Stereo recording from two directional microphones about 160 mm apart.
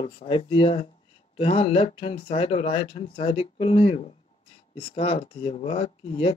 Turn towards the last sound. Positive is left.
turn(degrees=35)  # may be behind; listen again after turning